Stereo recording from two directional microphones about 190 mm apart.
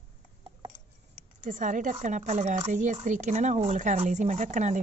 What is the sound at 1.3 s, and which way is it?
A woman's voice, 45° right (ahead or behind).